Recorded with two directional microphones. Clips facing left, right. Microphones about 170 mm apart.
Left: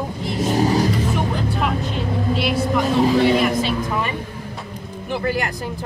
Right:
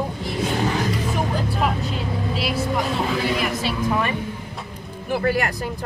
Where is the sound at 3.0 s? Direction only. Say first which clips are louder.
Left 7 dB; 35° left (ahead or behind).